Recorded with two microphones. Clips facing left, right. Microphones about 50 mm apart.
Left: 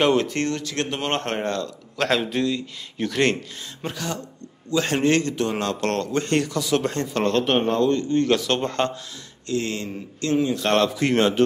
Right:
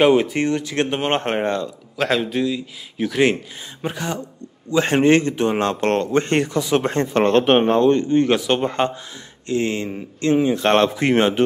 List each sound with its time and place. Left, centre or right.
0.0 s speech: centre
2.0 s a man's voice: centre
3.8 s a man's voice: centre